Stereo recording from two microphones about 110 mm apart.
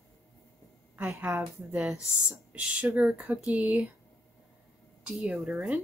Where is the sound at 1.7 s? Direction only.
5° right (ahead or behind).